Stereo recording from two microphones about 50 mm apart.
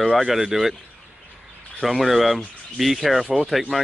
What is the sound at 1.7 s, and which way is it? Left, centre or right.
Speech, centre.